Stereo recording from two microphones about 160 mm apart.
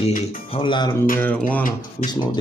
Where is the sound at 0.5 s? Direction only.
30° left (ahead or behind).